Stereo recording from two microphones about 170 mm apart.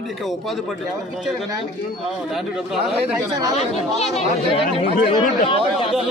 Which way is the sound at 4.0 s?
40° left (ahead or behind).